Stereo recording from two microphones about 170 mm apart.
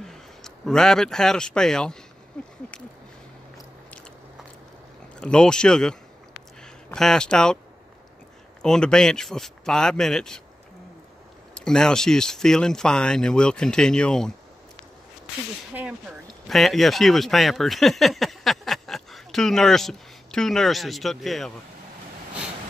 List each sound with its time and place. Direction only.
0.0 s speech: 5° left (ahead or behind)
2.4 s a sound: 5° left (ahead or behind)
3.5 s biting: centre (ahead or behind)
5.2 s a sound: 5° left (ahead or behind)
8.6 s speech: 5° left (ahead or behind)
11.5 s speech: 5° left (ahead or behind)
15.7 s speech: 5° right (ahead or behind)